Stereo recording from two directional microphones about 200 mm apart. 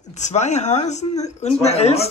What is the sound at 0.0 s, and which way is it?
A woman's voice, 35° left (ahead or behind).